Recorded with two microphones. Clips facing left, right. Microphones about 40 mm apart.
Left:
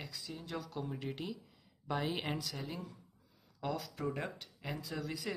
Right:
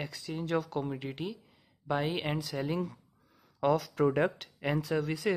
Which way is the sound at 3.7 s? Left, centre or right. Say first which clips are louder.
Right 12 dB; right.